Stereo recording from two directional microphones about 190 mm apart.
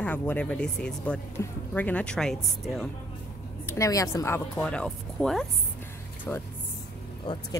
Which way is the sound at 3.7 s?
15° left (ahead or behind).